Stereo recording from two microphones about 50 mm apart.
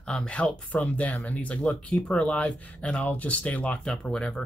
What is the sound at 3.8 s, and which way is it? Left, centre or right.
Speech, centre.